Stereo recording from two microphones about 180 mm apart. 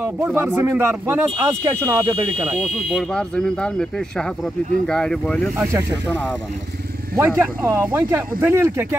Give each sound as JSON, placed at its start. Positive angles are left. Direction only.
{"t": 0.0, "sound": "speech", "side_deg": -15}
{"t": 2.9, "sound": "speech", "side_deg": 0}
{"t": 5.6, "sound": "speech", "side_deg": -15}
{"t": 7.2, "sound": "speech", "side_deg": -15}